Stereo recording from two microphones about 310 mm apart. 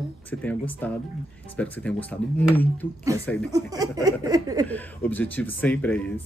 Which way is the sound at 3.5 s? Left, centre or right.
Centre.